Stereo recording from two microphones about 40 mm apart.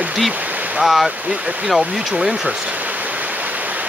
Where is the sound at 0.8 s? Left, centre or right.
Centre.